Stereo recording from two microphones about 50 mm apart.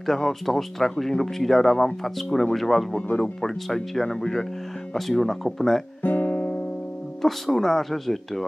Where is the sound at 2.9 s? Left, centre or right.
Left.